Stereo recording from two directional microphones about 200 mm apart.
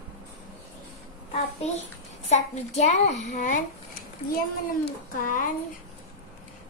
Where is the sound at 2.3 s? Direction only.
35° left (ahead or behind).